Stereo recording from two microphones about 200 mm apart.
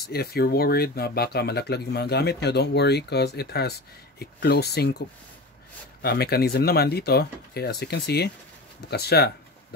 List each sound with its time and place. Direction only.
0.1 s speech: 50° left (ahead or behind)
6.0 s speech: 50° left (ahead or behind)